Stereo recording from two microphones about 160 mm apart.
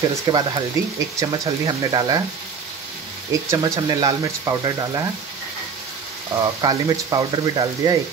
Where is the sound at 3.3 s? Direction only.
20° right (ahead or behind).